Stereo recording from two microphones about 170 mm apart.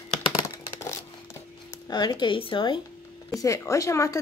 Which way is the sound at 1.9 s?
25° left (ahead or behind).